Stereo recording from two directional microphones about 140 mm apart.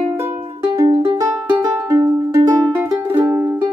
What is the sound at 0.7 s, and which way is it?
Music, 35° right (ahead or behind).